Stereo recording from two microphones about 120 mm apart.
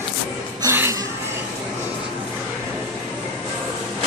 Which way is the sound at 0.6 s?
25° right (ahead or behind).